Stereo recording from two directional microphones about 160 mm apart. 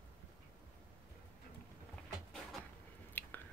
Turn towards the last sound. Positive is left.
turn(degrees=10)  # may be behind; listen again after turning